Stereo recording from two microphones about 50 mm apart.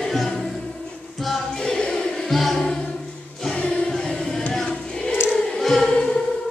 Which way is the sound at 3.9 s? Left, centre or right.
Centre.